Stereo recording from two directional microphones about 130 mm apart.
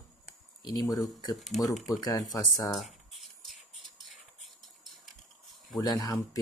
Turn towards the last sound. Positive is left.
turn(degrees=25)  # may be behind; listen again after turning